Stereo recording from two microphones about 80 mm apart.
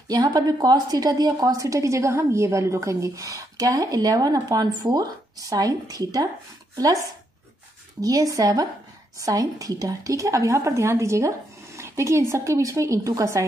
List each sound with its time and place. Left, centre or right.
0.2 s a woman's voice: right